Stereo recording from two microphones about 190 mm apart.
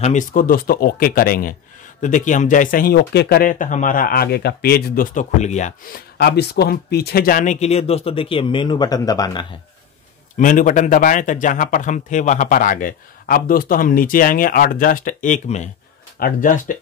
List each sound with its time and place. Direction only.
0.0 s speech: 40° left (ahead or behind)
6.1 s speech: 60° left (ahead or behind); by 9.5 s 20° left (ahead or behind)
10.3 s speech: 45° left (ahead or behind)